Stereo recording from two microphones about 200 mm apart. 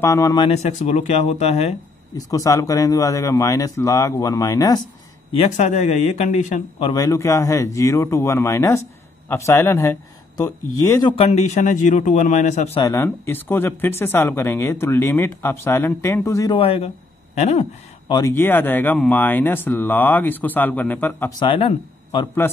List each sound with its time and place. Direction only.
0.0 s speech: 15° left (ahead or behind)
0.5 s a man's voice: 35° left (ahead or behind)
2.1 s speech: 15° left (ahead or behind)
5.3 s a man's voice: 35° left (ahead or behind)
6.9 s a man's voice: 15° left (ahead or behind); by 12.8 s 35° left (ahead or behind)
12.8 s speech: 15° left (ahead or behind)
16.5 s a man's voice: 30° left (ahead or behind)
18.1 s speech: 15° left (ahead or behind)
21.4 s a man's voice: 25° left (ahead or behind)